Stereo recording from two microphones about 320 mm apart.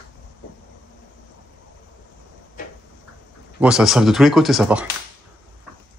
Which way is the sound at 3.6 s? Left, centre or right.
Centre.